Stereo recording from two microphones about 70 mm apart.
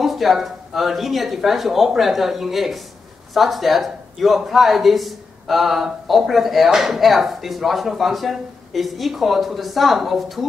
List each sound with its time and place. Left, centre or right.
0.0 s speech: centre